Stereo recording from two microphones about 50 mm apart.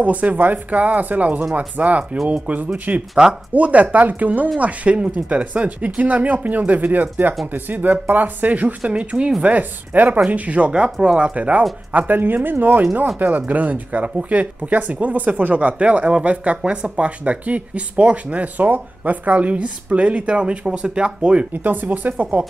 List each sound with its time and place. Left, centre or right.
0.0 s speech: right; by 11.3 s centre
11.3 s speech: right
21.6 s speech: right